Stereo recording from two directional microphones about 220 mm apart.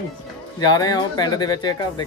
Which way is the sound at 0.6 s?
20° left (ahead or behind).